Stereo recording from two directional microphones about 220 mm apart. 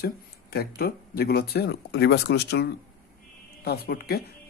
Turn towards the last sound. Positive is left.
turn(degrees=45)  # may be behind; listen again after turning